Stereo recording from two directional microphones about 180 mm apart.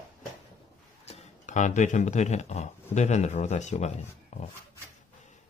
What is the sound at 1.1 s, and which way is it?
Speech, 40° left (ahead or behind).